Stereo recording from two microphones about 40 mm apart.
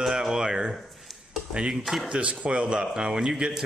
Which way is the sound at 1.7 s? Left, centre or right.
Centre.